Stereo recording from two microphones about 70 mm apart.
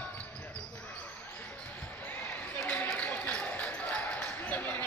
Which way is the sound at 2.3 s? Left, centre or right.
Left.